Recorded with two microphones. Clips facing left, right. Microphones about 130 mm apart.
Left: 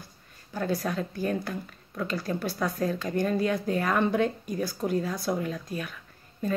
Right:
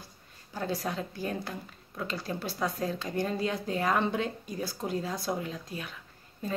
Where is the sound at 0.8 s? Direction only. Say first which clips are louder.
Left 4 dB; 20° right (ahead or behind).